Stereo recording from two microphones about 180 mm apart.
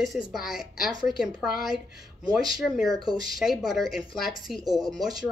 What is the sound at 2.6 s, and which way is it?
Speech, centre (ahead or behind).